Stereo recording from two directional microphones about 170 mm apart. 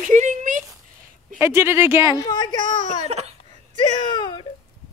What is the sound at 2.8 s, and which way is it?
Speech, 40° right (ahead or behind).